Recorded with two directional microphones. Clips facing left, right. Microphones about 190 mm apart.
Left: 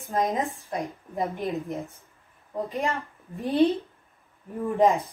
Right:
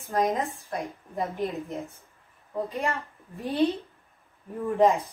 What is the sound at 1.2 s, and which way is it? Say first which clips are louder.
Speech: left 1 dB; centre (ahead or behind).